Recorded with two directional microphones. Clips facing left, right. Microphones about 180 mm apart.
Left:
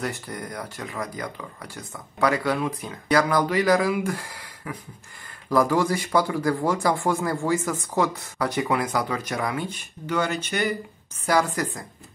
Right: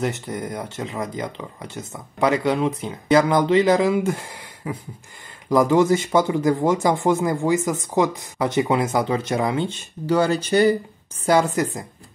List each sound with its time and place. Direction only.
0.0 s speech: 20° right (ahead or behind)